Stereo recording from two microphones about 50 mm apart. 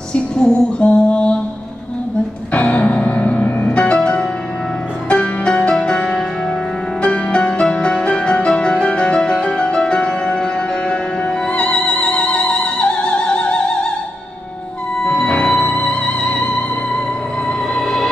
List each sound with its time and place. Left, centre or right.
0.1 s music: left
2.5 s music: left
15.0 s music: left
17.5 s music: centre